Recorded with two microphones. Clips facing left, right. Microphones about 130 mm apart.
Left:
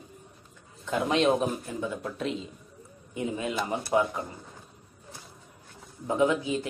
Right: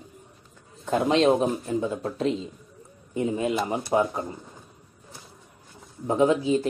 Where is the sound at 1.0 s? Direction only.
35° right (ahead or behind).